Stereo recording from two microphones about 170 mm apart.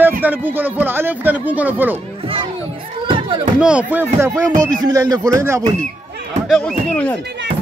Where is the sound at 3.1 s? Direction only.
30° right (ahead or behind).